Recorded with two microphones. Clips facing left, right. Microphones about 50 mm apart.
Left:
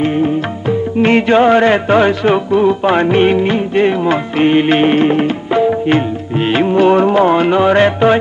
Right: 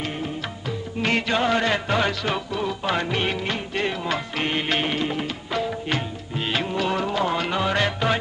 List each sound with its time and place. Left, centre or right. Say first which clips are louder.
0.0 s music: left 15 dB; left
5.5 s music: left 13 dB; left